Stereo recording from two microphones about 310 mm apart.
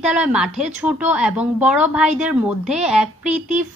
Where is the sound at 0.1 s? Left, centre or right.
Centre.